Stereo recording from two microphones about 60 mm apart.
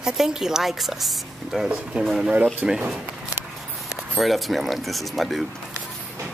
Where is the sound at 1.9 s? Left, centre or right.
Centre.